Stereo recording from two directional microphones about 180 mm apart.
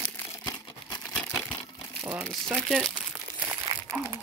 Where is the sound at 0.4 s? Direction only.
25° left (ahead or behind).